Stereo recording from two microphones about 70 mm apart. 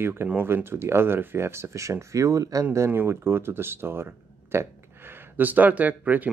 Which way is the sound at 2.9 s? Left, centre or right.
Right.